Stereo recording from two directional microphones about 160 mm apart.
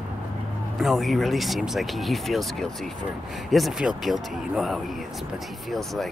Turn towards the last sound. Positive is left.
turn(degrees=0)  # may be behind; listen again after turning